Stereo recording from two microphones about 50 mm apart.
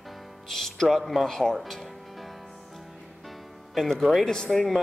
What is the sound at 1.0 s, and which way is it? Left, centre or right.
Speech, centre.